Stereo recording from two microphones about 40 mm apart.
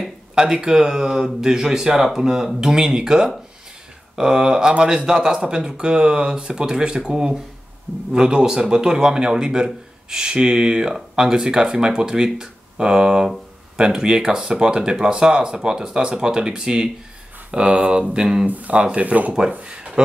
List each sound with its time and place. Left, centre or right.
0.3 s speech: centre; by 19.3 s right